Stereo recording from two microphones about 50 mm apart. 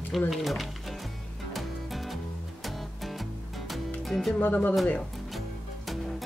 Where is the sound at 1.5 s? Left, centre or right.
Centre.